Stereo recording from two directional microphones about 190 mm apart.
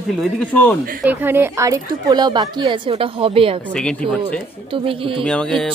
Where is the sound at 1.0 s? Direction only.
10° right (ahead or behind); by 3.6 s 30° right (ahead or behind).